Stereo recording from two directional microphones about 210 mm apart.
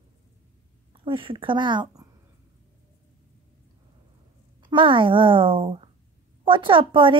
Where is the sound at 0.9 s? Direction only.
25° right (ahead or behind).